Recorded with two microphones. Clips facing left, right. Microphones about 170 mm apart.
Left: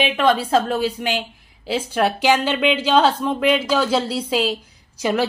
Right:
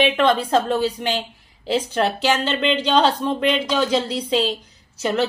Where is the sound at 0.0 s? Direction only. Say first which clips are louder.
Right 1 dB; 5° left (ahead or behind).